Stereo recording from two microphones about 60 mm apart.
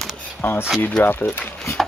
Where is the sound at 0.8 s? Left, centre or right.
Left.